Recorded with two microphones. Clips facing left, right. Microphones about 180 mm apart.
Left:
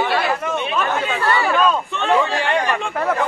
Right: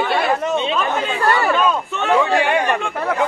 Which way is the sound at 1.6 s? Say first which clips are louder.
Even; 10° right (ahead or behind).